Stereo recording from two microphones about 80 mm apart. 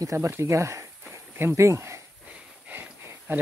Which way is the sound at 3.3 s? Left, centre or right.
Right.